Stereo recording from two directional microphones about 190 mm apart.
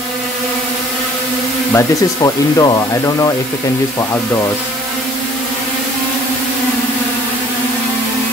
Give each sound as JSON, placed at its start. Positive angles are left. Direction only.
{"t": 1.7, "sound": "speech", "side_deg": 15}